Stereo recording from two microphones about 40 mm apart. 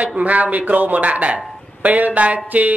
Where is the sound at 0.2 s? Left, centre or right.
Right.